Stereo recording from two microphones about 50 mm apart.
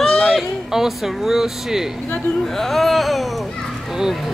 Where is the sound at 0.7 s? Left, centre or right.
Centre.